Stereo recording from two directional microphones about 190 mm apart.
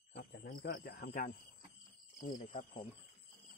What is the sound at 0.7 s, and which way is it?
Speech, 50° left (ahead or behind).